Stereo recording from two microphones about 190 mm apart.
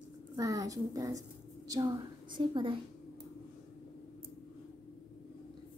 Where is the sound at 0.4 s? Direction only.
20° right (ahead or behind).